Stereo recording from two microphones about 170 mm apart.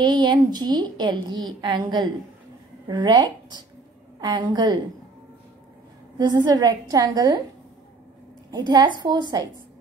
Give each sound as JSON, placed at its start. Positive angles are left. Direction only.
{"t": 0.0, "sound": "a woman's voice", "side_deg": -25}
{"t": 6.1, "sound": "a woman's voice", "side_deg": -25}
{"t": 8.5, "sound": "a woman's voice", "side_deg": -25}